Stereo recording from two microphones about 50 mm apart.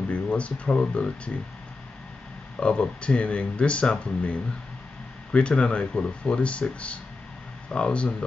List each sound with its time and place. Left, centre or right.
0.1 s speech: left
2.6 s speech: left
7.7 s speech: left